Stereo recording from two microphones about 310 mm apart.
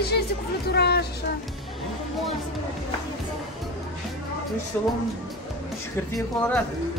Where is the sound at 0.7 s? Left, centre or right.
Left.